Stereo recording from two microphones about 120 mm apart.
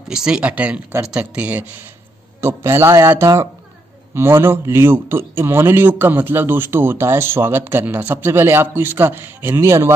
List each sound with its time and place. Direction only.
0.1 s a man's voice: 5° right (ahead or behind); by 9.9 s 20° right (ahead or behind)